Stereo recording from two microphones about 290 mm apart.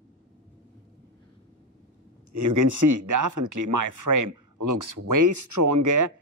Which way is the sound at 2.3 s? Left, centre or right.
Right.